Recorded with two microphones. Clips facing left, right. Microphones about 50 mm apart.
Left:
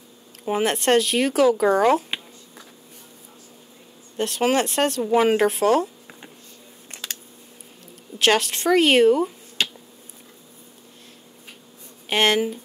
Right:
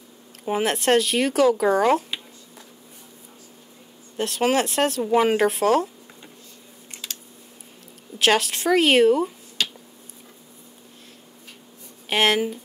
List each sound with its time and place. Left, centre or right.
0.5 s speech: centre
4.2 s speech: centre
7.0 s a sound: left
8.2 s speech: centre
12.1 s speech: centre